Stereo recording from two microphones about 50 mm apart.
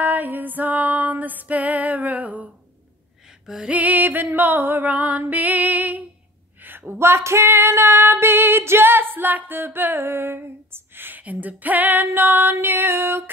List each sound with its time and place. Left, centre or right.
0.0 s female singing: right
3.4 s music: centre
3.7 s female singing: right
6.6 s a sound: right
7.0 s female singing: right